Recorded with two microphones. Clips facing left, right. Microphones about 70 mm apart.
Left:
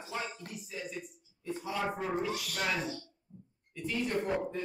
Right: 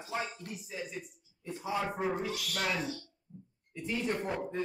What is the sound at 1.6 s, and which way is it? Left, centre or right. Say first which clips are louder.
Speech: right 2 dB; right.